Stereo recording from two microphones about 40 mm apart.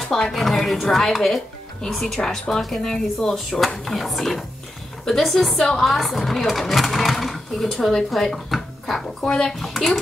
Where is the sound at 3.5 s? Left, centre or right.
Centre.